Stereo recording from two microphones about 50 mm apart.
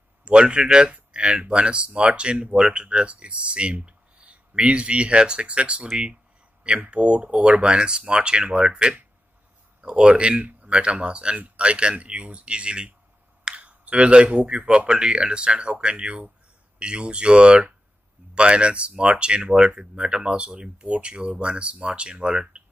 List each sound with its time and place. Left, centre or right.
0.2 s speech: centre